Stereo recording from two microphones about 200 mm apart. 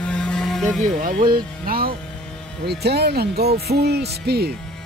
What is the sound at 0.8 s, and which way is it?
Speech, 40° right (ahead or behind).